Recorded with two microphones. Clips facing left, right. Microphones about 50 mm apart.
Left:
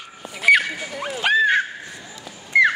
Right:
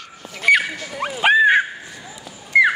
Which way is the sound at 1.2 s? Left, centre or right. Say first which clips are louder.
Right 4 dB; centre.